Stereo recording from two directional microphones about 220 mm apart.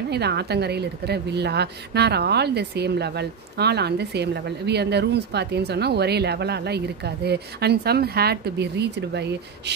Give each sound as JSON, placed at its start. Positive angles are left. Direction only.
{"t": 0.1, "sound": "a woman's voice", "side_deg": -50}